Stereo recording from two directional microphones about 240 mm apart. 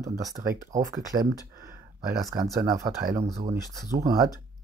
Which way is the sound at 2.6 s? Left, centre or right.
Centre.